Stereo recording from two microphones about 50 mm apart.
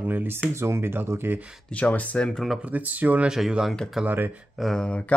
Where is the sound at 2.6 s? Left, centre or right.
Right.